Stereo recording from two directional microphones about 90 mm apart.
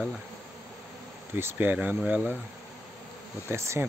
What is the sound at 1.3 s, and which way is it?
Speech, 25° right (ahead or behind).